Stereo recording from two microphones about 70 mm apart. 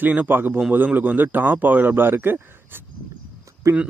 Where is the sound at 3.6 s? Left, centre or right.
Right.